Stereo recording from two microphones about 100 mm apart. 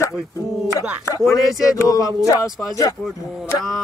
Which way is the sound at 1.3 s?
35° left (ahead or behind).